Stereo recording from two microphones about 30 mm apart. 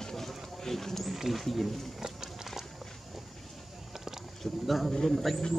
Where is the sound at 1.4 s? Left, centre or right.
Centre.